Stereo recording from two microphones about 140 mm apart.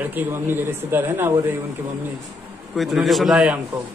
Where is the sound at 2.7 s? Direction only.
Centre (ahead or behind).